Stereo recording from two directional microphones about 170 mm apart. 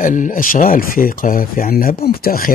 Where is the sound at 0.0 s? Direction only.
50° left (ahead or behind).